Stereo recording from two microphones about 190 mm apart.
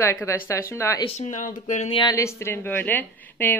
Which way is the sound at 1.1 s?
40° left (ahead or behind).